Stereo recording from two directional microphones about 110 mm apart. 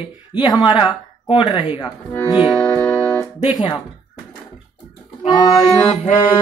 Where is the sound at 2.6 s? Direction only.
10° left (ahead or behind).